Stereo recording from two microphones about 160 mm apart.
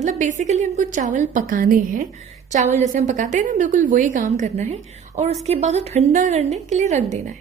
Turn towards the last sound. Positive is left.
turn(degrees=-45)  # may be behind; listen again after turning